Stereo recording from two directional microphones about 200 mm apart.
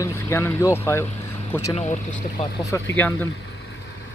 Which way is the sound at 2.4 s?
15° left (ahead or behind).